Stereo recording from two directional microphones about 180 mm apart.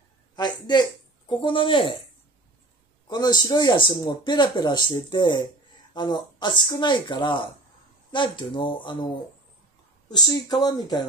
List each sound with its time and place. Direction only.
0.4 s speech: 25° left (ahead or behind)
3.1 s speech: 25° left (ahead or behind)